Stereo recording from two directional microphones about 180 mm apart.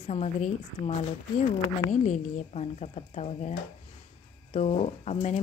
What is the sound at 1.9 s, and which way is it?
Speech, 40° left (ahead or behind).